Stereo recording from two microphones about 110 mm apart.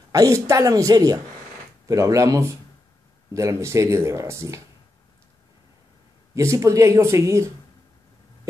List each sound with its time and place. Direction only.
0.1 s a woman's voice: 30° right (ahead or behind)
6.3 s speech: 30° right (ahead or behind)